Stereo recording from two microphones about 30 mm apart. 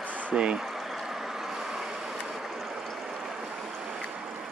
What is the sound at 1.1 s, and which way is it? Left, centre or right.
Vehicle, centre.